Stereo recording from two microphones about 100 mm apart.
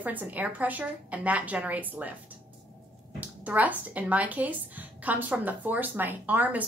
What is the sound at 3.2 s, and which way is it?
Speech, 15° right (ahead or behind).